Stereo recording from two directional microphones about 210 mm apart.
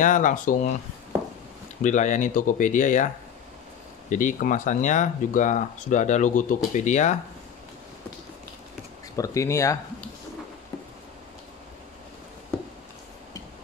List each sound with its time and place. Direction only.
0.0 s speech: 40° left (ahead or behind)
1.8 s speech: 35° left (ahead or behind)
4.1 s speech: 40° left (ahead or behind)
9.1 s speech: 15° left (ahead or behind)